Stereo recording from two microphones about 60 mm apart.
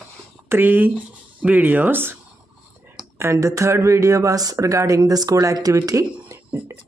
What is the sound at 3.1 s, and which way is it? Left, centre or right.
Speech, right.